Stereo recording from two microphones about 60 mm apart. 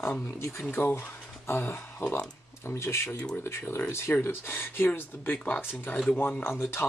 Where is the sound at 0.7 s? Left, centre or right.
Left.